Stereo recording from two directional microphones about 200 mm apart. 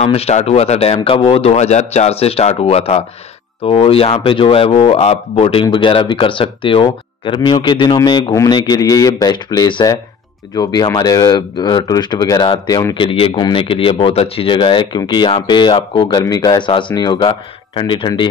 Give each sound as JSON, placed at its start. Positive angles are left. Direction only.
{"t": 0.0, "sound": "a man's voice", "side_deg": 30}